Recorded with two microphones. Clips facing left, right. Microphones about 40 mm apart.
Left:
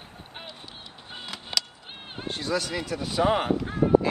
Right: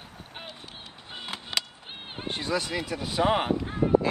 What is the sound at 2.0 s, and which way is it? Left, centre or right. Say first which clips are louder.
Speech: even; centre.